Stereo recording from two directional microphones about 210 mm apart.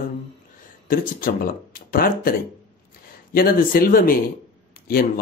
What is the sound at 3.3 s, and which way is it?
Speech, 45° left (ahead or behind).